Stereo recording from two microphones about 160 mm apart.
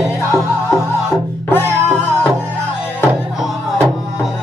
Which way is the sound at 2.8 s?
15° left (ahead or behind).